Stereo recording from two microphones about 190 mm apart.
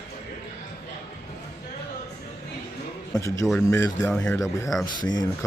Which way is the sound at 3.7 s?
10° left (ahead or behind).